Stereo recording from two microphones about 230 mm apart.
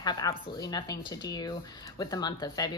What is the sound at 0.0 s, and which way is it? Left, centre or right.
A woman's voice, centre.